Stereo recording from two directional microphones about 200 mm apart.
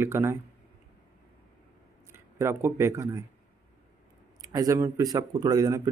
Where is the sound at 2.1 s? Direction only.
15° right (ahead or behind).